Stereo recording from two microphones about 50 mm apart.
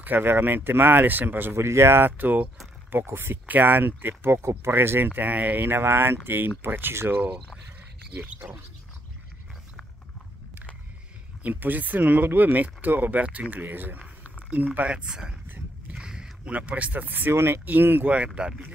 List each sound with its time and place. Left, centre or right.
0.0 s speech: right
1.5 s speech: right
3.1 s speech: right
3.4 s speech: right
8.4 s speech: right
11.4 s speech: right; by 15.3 s centre
15.9 s boat: centre
16.5 s speech: right
17.3 s speech: right
17.6 s speech: right
18.1 s speech: right